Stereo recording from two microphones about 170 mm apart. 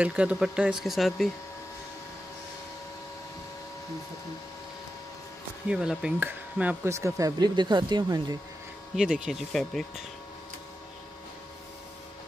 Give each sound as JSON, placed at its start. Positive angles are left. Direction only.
{"t": 0.0, "sound": "speech", "side_deg": -5}
{"t": 5.7, "sound": "speech", "side_deg": -5}
{"t": 8.9, "sound": "speech", "side_deg": -5}